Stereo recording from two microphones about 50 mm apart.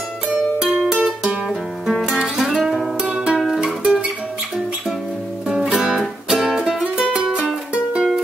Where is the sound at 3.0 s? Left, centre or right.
Centre.